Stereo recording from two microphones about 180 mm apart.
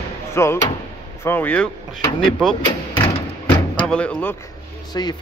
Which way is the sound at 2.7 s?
30° left (ahead or behind).